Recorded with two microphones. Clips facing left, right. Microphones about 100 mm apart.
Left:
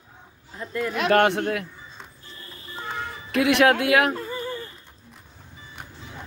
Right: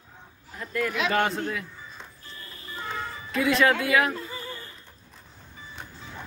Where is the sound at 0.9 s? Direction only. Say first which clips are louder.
Left 8 dB; 55° left (ahead or behind).